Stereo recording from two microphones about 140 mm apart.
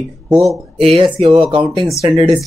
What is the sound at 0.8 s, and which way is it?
Speech, 40° right (ahead or behind).